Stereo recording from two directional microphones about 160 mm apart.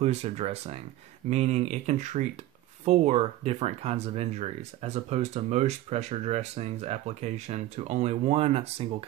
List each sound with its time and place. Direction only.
0.0 s speech: 40° right (ahead or behind)